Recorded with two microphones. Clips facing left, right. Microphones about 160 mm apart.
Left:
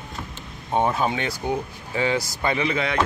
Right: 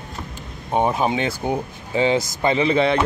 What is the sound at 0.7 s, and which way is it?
Speech, 20° right (ahead or behind).